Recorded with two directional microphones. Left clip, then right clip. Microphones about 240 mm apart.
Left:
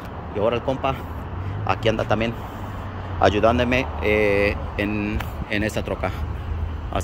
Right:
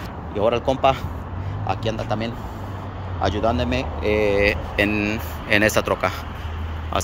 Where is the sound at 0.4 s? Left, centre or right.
Centre.